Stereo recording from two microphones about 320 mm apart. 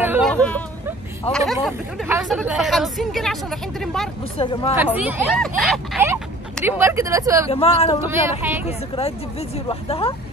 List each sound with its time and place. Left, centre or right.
0.0 s speech: centre
4.2 s speech: centre
4.9 s speech: centre
7.4 s speech: centre
8.0 s speech: centre
8.6 s speech: centre